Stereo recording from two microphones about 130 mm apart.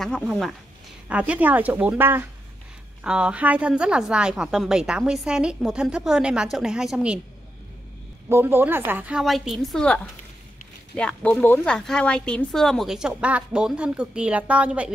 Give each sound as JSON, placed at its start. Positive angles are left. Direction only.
{"t": 1.0, "sound": "a woman's voice", "side_deg": -10}
{"t": 8.3, "sound": "a woman's voice", "side_deg": -15}
{"t": 9.2, "sound": "speech", "side_deg": 0}